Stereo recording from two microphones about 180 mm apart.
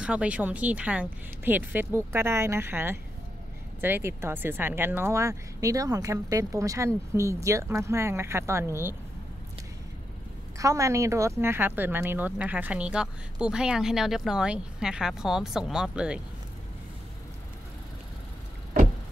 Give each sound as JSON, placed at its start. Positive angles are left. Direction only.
{"t": 0.0, "sound": "speech", "side_deg": -5}
{"t": 10.6, "sound": "speech", "side_deg": -15}